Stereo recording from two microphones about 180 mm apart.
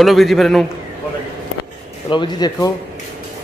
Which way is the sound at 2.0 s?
25° left (ahead or behind).